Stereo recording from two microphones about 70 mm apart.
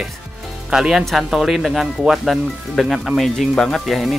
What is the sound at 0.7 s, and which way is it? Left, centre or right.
Speech, centre.